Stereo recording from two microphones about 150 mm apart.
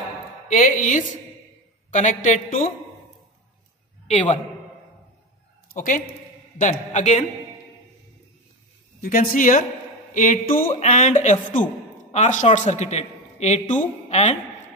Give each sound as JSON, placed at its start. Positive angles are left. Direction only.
{"t": 0.5, "sound": "a woman's voice", "side_deg": 60}
{"t": 4.1, "sound": "a woman's voice", "side_deg": 55}
{"t": 5.7, "sound": "a woman's voice", "side_deg": 60}
{"t": 9.0, "sound": "a woman's voice", "side_deg": 70}
{"t": 10.7, "sound": "a woman's voice", "side_deg": 55}